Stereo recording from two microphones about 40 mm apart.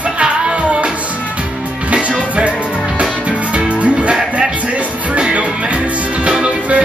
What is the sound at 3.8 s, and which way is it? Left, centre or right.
Music, right.